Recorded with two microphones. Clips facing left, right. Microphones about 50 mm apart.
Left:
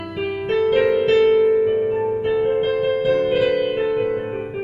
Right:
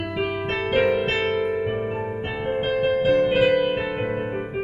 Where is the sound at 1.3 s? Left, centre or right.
Centre.